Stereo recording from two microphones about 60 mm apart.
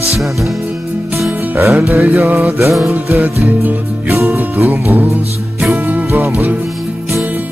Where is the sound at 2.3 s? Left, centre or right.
Right.